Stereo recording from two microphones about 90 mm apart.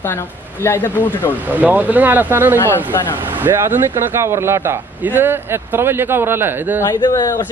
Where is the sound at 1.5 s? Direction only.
20° right (ahead or behind).